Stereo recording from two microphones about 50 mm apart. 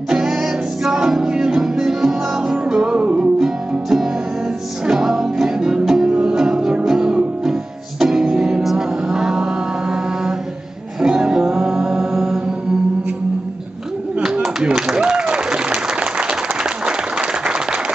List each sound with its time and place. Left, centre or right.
0.1 s music: centre
3.0 s music: right
3.3 s music: centre
8.6 s mantra: centre
11.0 s music: centre
14.2 s a sound: centre
14.9 s applause: centre